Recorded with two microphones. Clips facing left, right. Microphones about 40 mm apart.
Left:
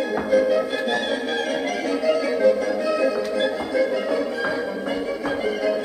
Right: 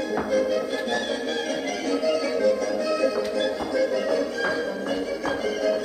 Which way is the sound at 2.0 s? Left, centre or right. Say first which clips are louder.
Left 4 dB; left.